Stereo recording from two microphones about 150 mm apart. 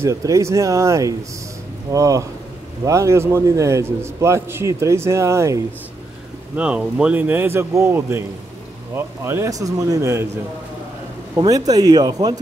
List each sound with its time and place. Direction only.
0.0 s a man's voice: 20° right (ahead or behind)
6.5 s a man's voice: 10° right (ahead or behind)
11.3 s a man's voice: 25° right (ahead or behind)